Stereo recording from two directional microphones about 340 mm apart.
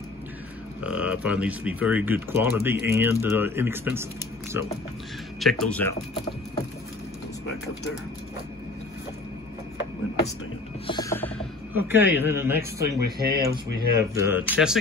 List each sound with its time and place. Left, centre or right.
0.8 s speech: centre
10.9 s mechanisms: centre
11.7 s a man's voice: centre
13.0 s speech: right
13.9 s speech: centre